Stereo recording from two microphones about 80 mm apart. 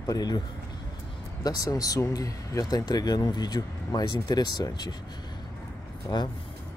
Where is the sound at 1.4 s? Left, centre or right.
Left.